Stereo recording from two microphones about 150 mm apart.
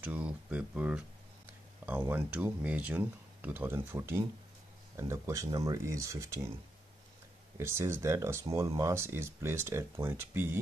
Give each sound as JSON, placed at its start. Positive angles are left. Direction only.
{"t": 0.0, "sound": "speech", "side_deg": -10}
{"t": 7.5, "sound": "speech", "side_deg": -15}